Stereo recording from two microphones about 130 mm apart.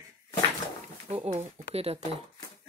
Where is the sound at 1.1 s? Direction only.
55° right (ahead or behind).